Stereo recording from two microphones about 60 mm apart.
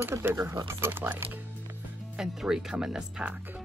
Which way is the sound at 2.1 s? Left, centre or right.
Centre.